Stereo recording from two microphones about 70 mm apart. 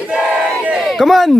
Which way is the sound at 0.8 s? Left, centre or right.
Centre.